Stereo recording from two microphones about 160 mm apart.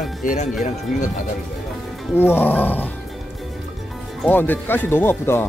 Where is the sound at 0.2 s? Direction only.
55° left (ahead or behind).